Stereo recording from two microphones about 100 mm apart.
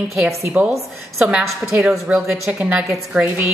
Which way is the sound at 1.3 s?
5° right (ahead or behind).